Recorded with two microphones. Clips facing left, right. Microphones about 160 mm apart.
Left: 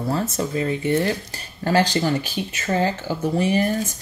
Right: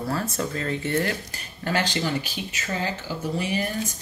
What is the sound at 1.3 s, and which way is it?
Speech, 30° left (ahead or behind).